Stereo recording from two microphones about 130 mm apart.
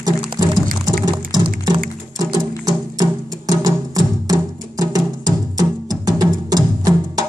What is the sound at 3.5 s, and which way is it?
Music, 30° right (ahead or behind).